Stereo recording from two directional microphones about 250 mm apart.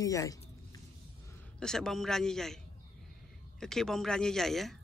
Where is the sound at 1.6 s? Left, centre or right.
Centre.